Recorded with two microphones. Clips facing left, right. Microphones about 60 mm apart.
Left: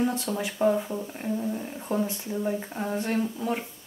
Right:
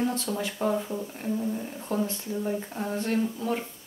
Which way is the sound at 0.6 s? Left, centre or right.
Centre.